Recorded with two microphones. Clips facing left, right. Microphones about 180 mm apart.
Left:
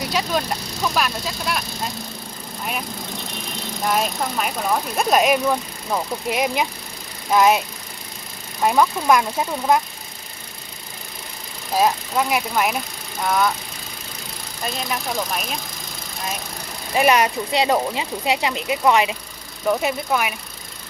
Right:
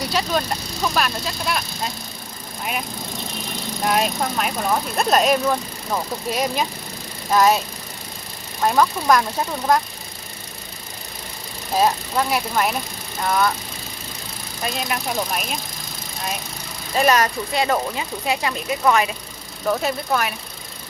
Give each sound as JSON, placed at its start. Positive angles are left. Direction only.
{"t": 0.9, "sound": "speech", "side_deg": 5}
{"t": 3.8, "sound": "speech", "side_deg": 0}
{"t": 8.6, "sound": "speech", "side_deg": 10}
{"t": 11.7, "sound": "speech", "side_deg": 5}
{"t": 14.6, "sound": "speech", "side_deg": 0}
{"t": 16.9, "sound": "speech", "side_deg": 15}